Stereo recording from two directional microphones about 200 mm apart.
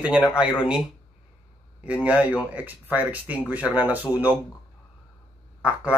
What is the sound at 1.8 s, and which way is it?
Speech, 5° right (ahead or behind).